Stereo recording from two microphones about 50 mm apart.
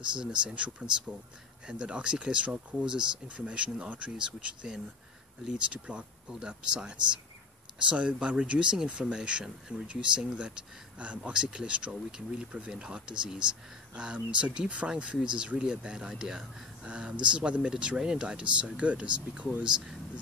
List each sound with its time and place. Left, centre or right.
0.2 s speech: centre